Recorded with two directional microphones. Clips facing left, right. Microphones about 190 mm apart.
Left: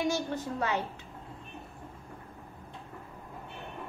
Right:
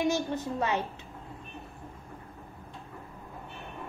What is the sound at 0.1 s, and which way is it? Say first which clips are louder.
Speech: right 2 dB; 25° right (ahead or behind).